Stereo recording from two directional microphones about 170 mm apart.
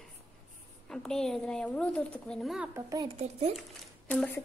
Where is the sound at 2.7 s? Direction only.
20° right (ahead or behind).